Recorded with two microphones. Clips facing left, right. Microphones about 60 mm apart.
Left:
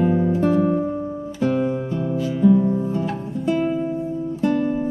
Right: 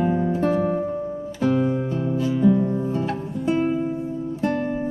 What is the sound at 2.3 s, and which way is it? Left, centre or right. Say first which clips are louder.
Music: left 3 dB; centre.